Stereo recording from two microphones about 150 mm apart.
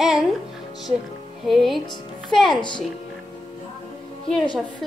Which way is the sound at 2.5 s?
30° left (ahead or behind).